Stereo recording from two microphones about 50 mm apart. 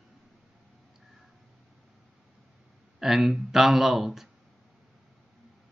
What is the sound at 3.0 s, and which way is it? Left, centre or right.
Speech, centre.